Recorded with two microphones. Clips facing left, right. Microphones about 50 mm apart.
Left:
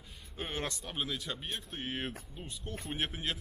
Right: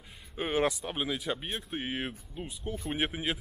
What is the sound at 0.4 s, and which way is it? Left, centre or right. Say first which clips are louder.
Speech: right 9 dB; centre.